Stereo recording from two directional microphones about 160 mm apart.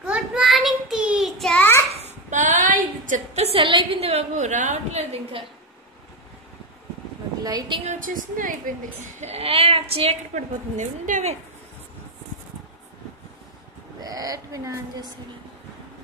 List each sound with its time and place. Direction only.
0.0 s child singing: 5° right (ahead or behind)
1.9 s a sound: 40° right (ahead or behind)
7.4 s a woman's voice: 25° right (ahead or behind)
7.8 s a woman's voice: 50° right (ahead or behind)
9.2 s a woman's voice: 40° right (ahead or behind)
13.9 s a sound: 25° right (ahead or behind)